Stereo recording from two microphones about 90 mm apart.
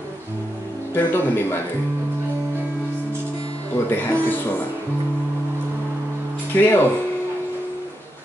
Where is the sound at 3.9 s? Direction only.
20° left (ahead or behind).